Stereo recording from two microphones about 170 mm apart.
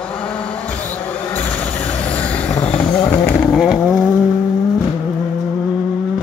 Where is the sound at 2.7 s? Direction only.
25° left (ahead or behind).